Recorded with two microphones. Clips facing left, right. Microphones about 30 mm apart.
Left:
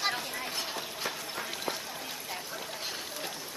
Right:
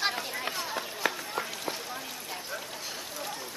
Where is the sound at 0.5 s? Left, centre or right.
Right.